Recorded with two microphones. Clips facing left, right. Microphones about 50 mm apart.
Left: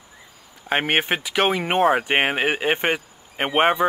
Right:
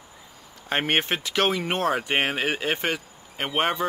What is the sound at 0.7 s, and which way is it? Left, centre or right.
Speech, centre.